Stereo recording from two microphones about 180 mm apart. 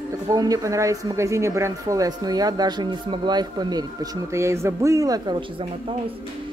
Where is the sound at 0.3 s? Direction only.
20° right (ahead or behind).